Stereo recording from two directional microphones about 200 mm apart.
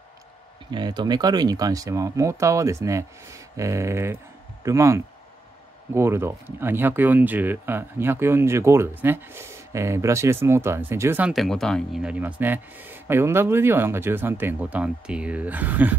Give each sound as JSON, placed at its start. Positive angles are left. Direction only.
{"t": 0.7, "sound": "speech", "side_deg": -20}